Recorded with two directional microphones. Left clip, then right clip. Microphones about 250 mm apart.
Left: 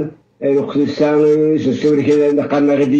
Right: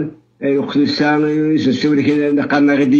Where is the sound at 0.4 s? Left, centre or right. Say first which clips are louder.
Left 1 dB; right.